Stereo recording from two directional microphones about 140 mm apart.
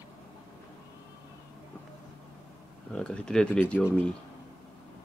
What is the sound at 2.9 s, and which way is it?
Speech, 5° left (ahead or behind).